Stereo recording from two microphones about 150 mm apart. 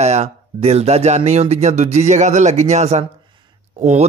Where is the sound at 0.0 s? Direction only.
45° right (ahead or behind).